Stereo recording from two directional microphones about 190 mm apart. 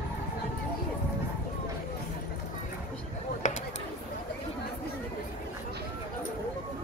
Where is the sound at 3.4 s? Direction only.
40° left (ahead or behind).